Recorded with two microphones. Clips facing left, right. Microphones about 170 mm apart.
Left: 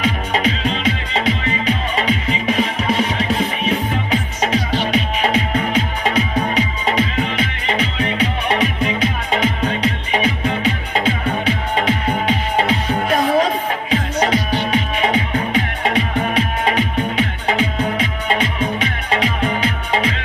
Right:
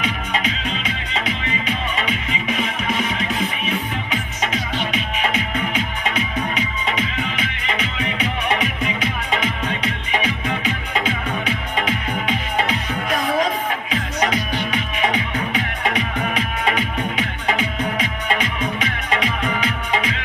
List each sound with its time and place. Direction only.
0.0 s music: 35° left (ahead or behind)